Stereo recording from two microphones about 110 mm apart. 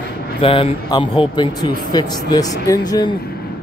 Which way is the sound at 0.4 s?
55° left (ahead or behind).